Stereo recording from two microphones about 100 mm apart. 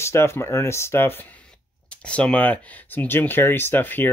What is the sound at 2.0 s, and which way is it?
Speech, 10° left (ahead or behind).